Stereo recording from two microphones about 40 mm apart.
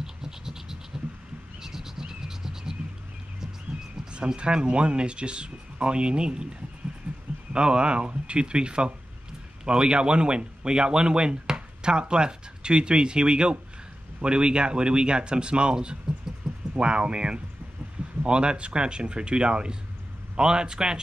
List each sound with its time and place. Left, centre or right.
0.0 s scratch: centre
1.6 s a sound: centre
4.4 s speech: right
7.5 s speech: right